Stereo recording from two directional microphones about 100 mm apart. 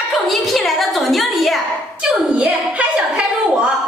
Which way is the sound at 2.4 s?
10° right (ahead or behind).